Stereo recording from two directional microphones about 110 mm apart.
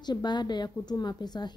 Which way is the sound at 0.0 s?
40° left (ahead or behind).